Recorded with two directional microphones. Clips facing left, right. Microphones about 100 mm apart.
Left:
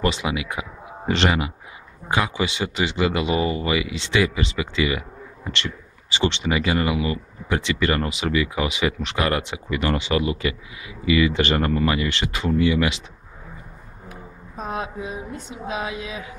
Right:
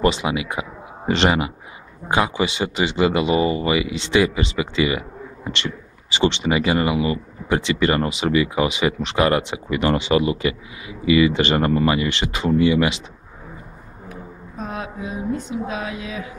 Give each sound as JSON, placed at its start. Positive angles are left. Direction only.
{"t": 0.0, "sound": "speech", "side_deg": -25}
{"t": 14.6, "sound": "mantra", "side_deg": 20}
{"t": 15.3, "sound": "speech", "side_deg": 20}